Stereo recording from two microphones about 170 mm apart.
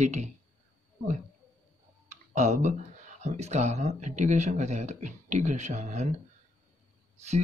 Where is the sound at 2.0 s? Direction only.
45° right (ahead or behind).